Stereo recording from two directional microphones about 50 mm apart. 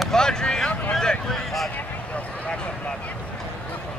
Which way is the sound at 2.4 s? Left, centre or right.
Left.